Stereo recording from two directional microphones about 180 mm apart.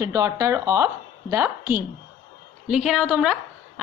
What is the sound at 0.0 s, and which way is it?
A woman's voice, 15° right (ahead or behind).